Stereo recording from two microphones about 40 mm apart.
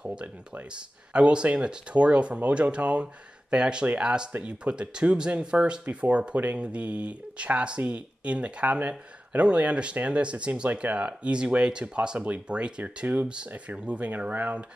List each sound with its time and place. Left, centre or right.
0.0 s a sound: right
1.1 s speech: right
3.5 s speech: right
12.8 s speech: right